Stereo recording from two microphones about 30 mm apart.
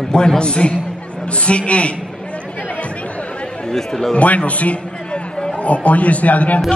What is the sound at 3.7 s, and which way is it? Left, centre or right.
Speech, centre.